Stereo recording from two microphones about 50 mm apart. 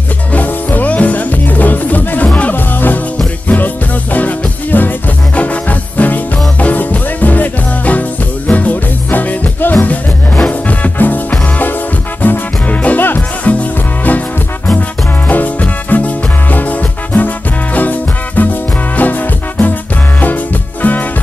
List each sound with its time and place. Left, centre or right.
0.3 s music: left
2.5 s music: left
15.2 s music: left